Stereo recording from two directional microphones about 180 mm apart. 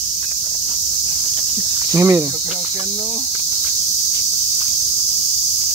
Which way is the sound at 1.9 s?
15° right (ahead or behind).